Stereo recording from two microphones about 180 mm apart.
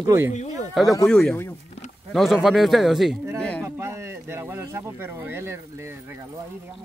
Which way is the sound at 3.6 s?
15° right (ahead or behind).